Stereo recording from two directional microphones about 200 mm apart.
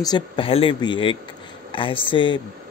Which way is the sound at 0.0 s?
25° left (ahead or behind).